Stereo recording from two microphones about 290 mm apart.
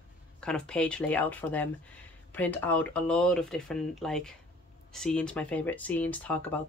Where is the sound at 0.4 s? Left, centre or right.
Centre.